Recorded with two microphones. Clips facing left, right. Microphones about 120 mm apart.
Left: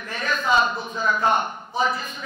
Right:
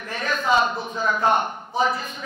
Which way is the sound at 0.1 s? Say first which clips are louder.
Right 1 dB; 50° right (ahead or behind).